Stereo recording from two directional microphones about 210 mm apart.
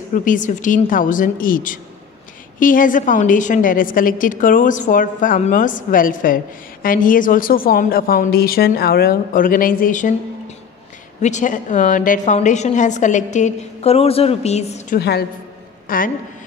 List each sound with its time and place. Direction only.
0.1 s a woman's voice: 40° left (ahead or behind)
11.1 s a woman's voice: 35° left (ahead or behind)
15.0 s a woman's voice: 50° left (ahead or behind)